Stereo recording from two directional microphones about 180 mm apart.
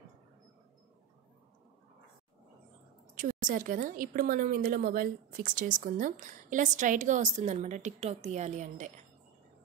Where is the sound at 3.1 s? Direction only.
45° right (ahead or behind).